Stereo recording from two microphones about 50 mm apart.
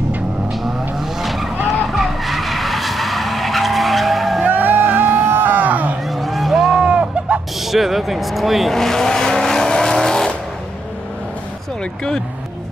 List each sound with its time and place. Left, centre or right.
0.9 s vehicle: centre
1.9 s skidding: centre
4.5 s music: right
6.0 s a sound: centre
6.8 s a sound: right
7.6 s vehicle: centre